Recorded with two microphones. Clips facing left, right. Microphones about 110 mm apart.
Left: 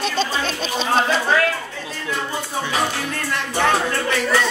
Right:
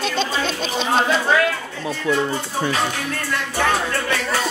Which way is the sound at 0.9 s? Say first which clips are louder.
Even; 5° right (ahead or behind).